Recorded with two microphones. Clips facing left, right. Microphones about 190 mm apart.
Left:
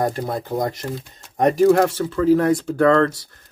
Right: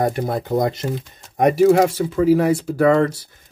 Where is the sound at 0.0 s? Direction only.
20° right (ahead or behind).